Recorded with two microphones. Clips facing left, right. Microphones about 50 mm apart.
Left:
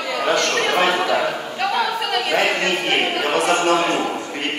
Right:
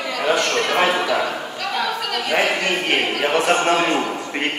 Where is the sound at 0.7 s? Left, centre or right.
Centre.